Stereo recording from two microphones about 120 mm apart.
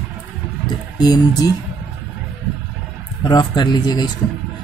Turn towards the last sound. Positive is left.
turn(degrees=35)  # may be behind; listen again after turning